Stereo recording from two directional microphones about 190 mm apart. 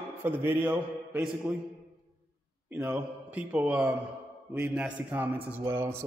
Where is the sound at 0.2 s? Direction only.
10° right (ahead or behind).